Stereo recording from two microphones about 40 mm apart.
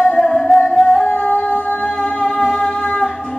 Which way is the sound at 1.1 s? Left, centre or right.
Left.